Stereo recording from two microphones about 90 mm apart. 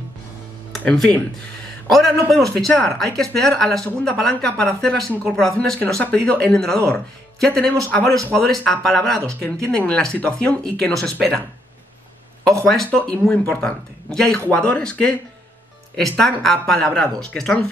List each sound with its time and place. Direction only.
0.7 s a man's voice: 5° left (ahead or behind)
12.4 s speech: 5° left (ahead or behind)
14.1 s a man's voice: 5° left (ahead or behind)